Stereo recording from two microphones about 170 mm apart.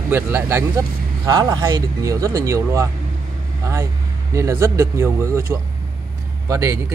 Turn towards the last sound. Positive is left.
turn(degrees=-20)  # may be behind; listen again after turning